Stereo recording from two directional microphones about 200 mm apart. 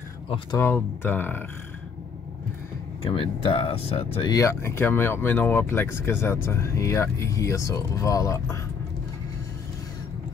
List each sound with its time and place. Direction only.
0.6 s speech: 10° left (ahead or behind)
3.0 s speech: 25° left (ahead or behind)
4.3 s speech: 15° left (ahead or behind)